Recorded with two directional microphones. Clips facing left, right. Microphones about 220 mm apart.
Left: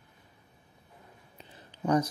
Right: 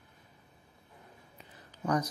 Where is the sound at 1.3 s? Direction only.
25° left (ahead or behind).